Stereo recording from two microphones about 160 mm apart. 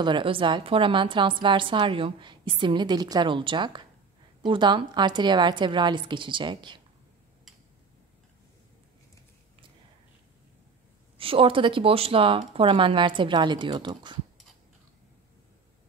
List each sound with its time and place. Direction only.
0.0 s a woman's voice: 30° right (ahead or behind)
11.1 s a woman's voice: 35° right (ahead or behind)